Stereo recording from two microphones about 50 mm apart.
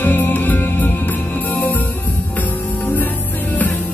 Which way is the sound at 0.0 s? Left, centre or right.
Left.